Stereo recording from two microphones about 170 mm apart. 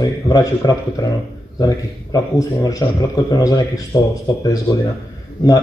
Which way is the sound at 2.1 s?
20° left (ahead or behind).